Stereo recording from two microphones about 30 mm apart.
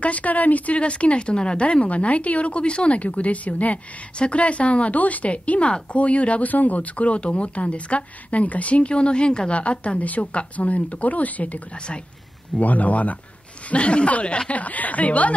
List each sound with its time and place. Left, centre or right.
0.0 s speech: left
0.7 s speech: left
1.9 s speech: left
3.0 s speech: left
4.2 s speech: left
6.4 s speech: left
9.5 s speech: left
10.0 s speech: left
13.7 s speech: left
14.5 s speech: left